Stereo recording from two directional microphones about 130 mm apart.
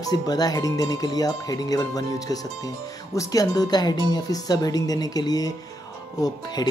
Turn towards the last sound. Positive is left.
turn(degrees=30)  # may be behind; listen again after turning